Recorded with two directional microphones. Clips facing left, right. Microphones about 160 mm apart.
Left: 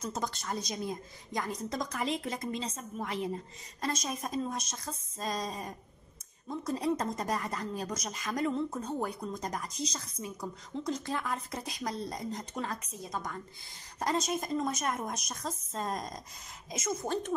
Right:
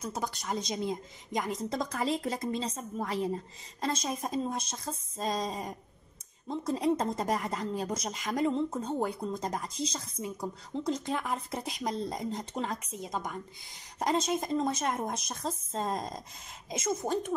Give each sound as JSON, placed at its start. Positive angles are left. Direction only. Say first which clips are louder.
{"t": 0.0, "sound": "speech", "louder": "even", "side_deg": -10}